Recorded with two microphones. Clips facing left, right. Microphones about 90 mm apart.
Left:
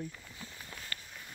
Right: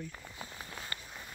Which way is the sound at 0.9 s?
20° right (ahead or behind).